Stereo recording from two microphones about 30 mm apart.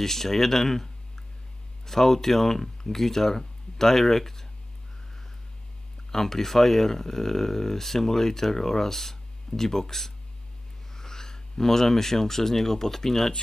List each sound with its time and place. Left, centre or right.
0.0 s speech: centre
6.1 s speech: centre